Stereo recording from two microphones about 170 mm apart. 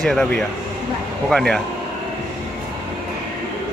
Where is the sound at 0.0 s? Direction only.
5° left (ahead or behind).